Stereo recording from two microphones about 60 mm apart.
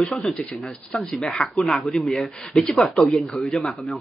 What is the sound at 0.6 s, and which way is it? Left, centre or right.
Speech, centre.